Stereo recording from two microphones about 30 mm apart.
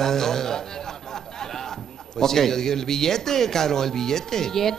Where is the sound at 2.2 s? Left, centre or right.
Centre.